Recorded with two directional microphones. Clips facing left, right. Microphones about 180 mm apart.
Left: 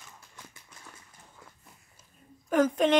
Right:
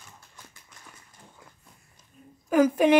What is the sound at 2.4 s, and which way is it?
Speech, 5° right (ahead or behind).